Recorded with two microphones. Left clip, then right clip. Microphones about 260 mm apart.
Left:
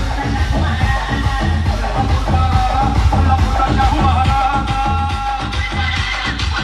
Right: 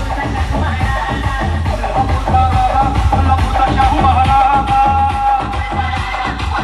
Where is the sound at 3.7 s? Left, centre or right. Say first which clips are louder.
Right 6 dB; right.